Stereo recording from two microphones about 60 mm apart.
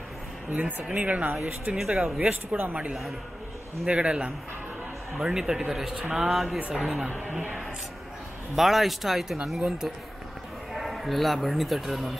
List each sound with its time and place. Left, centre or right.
0.8 s speech: right
1.8 s a man's voice: centre
5.9 s a man's voice: centre
6.2 s speech: centre
7.3 s speech: centre
8.5 s speech: centre